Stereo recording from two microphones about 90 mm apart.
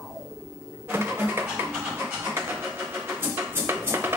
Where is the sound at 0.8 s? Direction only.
25° right (ahead or behind).